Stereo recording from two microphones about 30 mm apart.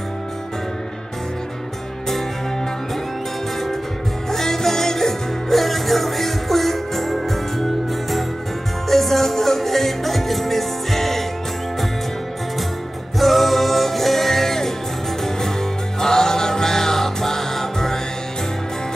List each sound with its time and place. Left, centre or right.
4.3 s music: centre
8.8 s music: centre
13.2 s music: centre
16.0 s music: centre